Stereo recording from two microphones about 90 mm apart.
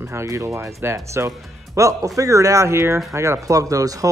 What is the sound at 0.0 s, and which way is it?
Speech, 30° right (ahead or behind).